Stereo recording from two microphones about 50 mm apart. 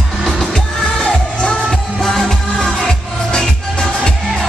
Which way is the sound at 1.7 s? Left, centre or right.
Centre.